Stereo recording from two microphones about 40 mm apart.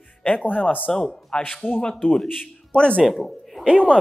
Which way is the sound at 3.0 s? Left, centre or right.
Centre.